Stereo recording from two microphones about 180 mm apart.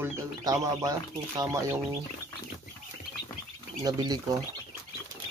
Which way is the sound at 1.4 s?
15° right (ahead or behind).